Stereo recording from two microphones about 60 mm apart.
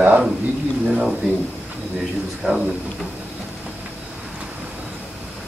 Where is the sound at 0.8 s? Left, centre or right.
Centre.